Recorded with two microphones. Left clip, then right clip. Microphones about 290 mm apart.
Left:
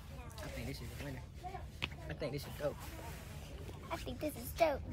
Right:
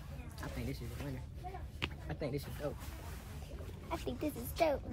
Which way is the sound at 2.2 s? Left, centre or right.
Centre.